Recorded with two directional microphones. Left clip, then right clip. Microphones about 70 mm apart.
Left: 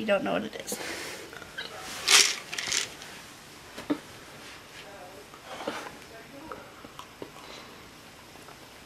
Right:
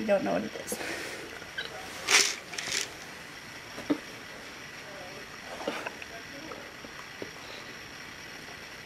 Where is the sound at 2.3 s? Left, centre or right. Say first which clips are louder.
Left 3 dB; right.